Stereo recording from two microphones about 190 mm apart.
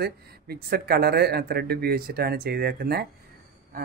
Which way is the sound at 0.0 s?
55° right (ahead or behind).